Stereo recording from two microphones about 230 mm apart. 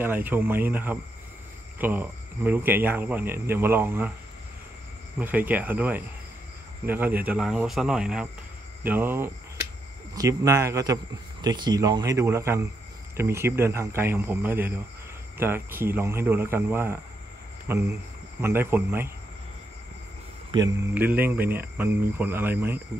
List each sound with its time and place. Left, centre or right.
0.0 s speech: centre
5.2 s speech: centre
20.5 s speech: centre